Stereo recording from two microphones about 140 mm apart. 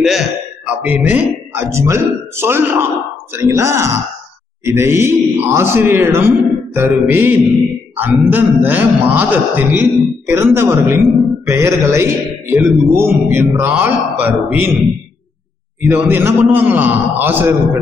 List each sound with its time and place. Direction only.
0.0 s a man's voice: centre (ahead or behind)
15.8 s a man's voice: 15° right (ahead or behind)